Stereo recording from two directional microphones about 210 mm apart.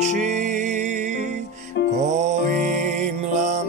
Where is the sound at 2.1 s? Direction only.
35° right (ahead or behind).